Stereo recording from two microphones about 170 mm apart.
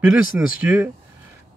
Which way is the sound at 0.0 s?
5° right (ahead or behind).